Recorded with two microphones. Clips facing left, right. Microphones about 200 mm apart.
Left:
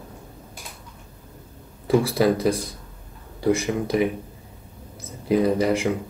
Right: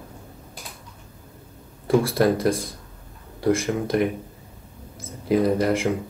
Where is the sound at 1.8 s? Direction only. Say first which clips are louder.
Even; centre (ahead or behind).